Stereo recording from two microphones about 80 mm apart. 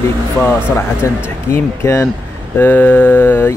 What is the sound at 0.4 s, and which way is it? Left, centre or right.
Mantra, left.